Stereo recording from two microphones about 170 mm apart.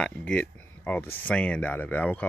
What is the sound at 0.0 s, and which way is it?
Speech, 5° left (ahead or behind).